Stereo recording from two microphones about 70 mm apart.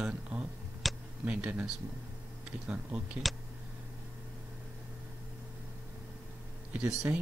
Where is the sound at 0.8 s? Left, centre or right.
Centre.